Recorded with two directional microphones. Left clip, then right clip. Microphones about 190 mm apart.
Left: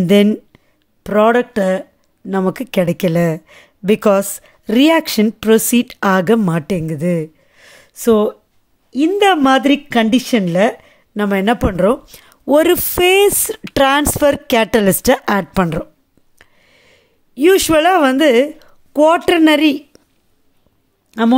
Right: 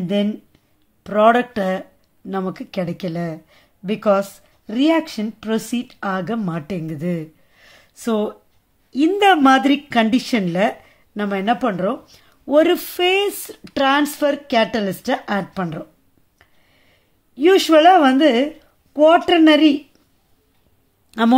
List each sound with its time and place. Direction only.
0.0 s speech: 60° left (ahead or behind)
1.0 s speech: 35° left (ahead or behind); by 15.9 s 55° left (ahead or behind)
16.3 s a sound: 50° left (ahead or behind)
21.1 s speech: 15° left (ahead or behind)